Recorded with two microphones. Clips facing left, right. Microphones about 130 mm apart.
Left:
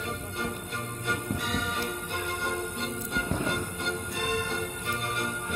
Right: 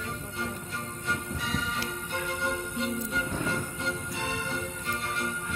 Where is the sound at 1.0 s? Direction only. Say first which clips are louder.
Left 2 dB; 60° left (ahead or behind).